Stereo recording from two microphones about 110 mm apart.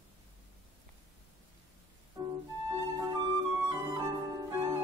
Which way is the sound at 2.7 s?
30° right (ahead or behind).